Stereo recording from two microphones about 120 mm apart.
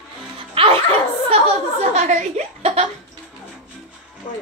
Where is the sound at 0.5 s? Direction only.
50° right (ahead or behind).